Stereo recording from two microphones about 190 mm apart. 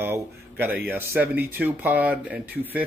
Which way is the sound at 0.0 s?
10° right (ahead or behind).